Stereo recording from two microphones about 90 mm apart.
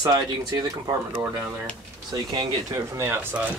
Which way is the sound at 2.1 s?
55° right (ahead or behind).